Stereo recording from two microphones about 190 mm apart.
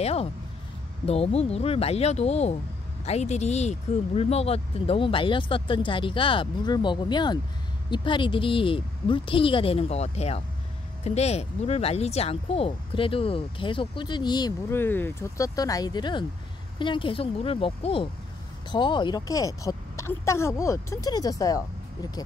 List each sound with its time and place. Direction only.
0.0 s speech: 30° left (ahead or behind)
14.8 s a woman's voice: 10° left (ahead or behind)